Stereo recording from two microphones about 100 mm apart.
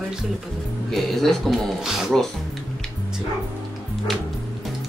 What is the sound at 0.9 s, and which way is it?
Speech, centre (ahead or behind).